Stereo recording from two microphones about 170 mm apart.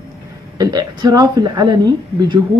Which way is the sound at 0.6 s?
25° right (ahead or behind).